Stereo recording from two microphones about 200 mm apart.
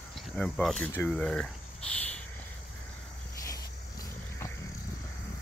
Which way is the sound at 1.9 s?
5° left (ahead or behind).